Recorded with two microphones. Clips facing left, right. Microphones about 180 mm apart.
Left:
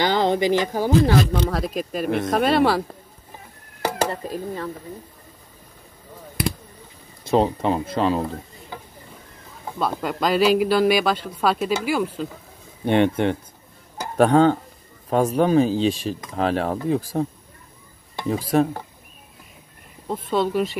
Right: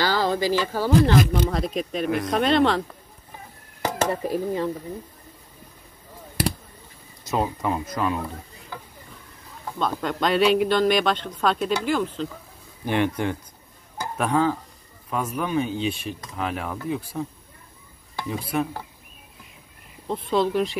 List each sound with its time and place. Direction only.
0.0 s speech: 20° left (ahead or behind)
1.5 s speech: centre (ahead or behind)
4.1 s speech: 15° right (ahead or behind)
7.2 s speech: 25° left (ahead or behind)
9.8 s speech: 5° left (ahead or behind)
12.8 s speech: 25° left (ahead or behind)
18.3 s speech: 40° left (ahead or behind)
20.1 s speech: centre (ahead or behind)